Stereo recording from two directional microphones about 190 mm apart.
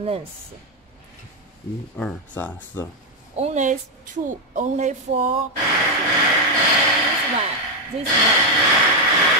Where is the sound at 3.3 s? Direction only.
35° right (ahead or behind).